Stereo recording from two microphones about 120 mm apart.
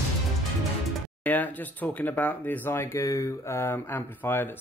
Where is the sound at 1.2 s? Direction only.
15° left (ahead or behind).